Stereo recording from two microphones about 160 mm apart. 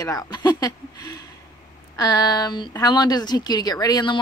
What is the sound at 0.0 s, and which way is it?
Speech, 20° left (ahead or behind).